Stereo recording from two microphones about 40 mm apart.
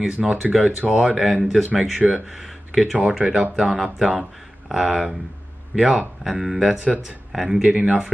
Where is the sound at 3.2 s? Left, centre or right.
Right.